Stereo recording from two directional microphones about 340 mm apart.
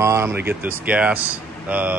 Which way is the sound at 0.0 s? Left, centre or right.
Centre.